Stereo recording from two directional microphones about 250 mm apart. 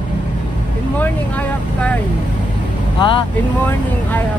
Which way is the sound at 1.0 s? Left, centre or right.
Centre.